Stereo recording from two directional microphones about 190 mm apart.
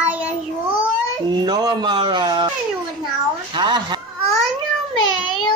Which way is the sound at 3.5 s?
25° right (ahead or behind).